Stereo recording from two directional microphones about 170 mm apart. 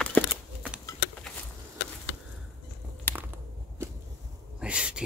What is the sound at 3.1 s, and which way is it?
Biting, 10° left (ahead or behind).